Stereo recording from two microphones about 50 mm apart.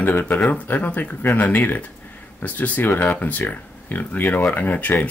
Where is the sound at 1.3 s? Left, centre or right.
Left.